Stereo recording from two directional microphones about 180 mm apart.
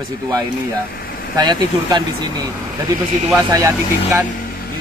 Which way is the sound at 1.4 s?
20° right (ahead or behind).